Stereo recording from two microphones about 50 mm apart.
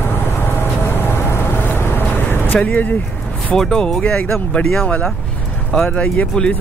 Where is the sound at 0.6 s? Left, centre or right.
Left.